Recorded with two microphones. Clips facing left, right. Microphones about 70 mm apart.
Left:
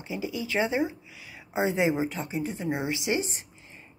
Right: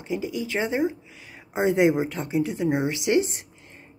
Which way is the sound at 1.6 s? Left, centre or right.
Right.